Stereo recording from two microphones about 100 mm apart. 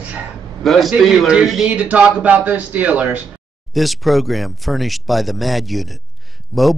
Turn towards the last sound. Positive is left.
turn(degrees=0)  # may be behind; listen again after turning